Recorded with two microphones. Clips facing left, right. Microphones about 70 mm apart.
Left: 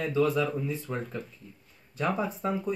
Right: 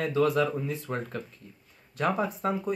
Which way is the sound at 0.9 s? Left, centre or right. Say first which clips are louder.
Right 3 dB; right.